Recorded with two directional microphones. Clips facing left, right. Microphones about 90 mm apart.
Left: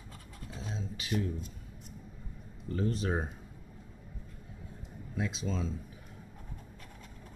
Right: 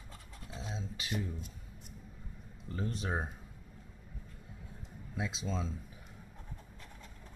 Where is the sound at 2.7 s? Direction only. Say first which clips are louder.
Left 5 dB; 15° right (ahead or behind).